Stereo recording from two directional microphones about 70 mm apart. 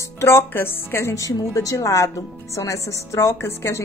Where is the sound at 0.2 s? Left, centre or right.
Left.